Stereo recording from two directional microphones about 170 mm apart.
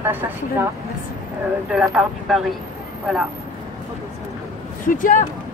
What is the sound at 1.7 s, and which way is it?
Speech, 5° right (ahead or behind).